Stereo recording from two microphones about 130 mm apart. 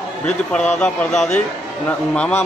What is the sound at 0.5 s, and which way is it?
Speech, 10° left (ahead or behind).